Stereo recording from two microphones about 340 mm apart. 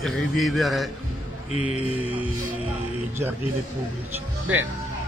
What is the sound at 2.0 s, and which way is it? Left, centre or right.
Speech, centre.